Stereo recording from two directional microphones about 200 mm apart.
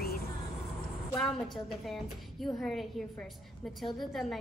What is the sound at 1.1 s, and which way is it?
Speech, centre (ahead or behind).